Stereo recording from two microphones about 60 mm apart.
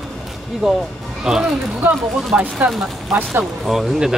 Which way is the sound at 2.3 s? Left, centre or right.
Right.